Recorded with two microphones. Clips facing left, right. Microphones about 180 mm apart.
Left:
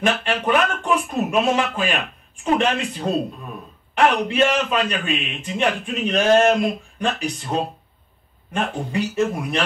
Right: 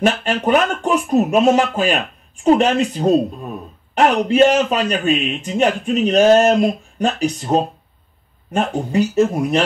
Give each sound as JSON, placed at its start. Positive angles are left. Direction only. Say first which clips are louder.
{"t": 0.0, "sound": "speech", "louder": "right 4 dB", "side_deg": -40}